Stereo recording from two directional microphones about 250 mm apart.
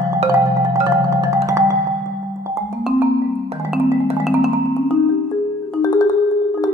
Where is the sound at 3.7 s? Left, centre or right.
Centre.